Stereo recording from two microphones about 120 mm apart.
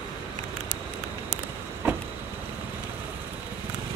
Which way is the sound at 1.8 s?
15° right (ahead or behind).